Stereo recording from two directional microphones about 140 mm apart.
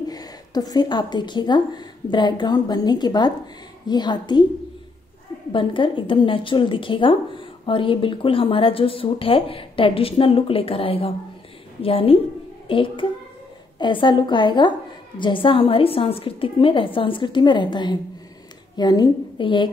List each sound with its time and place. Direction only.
0.1 s a woman's voice: 25° left (ahead or behind)
5.5 s a woman's voice: 35° left (ahead or behind)